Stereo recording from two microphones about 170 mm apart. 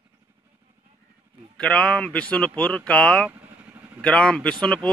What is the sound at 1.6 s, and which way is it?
Speech, 5° left (ahead or behind).